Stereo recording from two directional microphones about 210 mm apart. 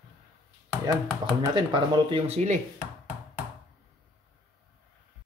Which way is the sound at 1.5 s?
25° right (ahead or behind).